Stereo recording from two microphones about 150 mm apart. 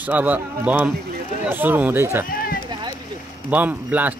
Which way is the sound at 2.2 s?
75° left (ahead or behind).